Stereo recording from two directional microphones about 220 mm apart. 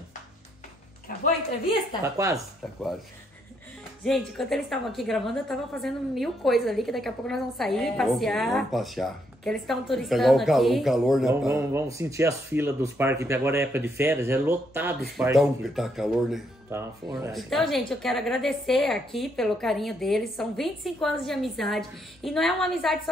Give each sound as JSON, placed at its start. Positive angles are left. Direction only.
{"t": 1.0, "sound": "speech", "side_deg": 40}
{"t": 2.0, "sound": "speech", "side_deg": -15}
{"t": 4.0, "sound": "a woman's voice", "side_deg": 0}
{"t": 11.5, "sound": "a woman's voice", "side_deg": -15}